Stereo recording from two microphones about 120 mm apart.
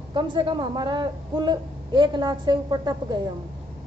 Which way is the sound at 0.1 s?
40° right (ahead or behind).